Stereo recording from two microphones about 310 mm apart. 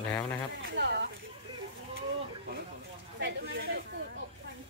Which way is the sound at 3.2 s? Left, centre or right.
Right.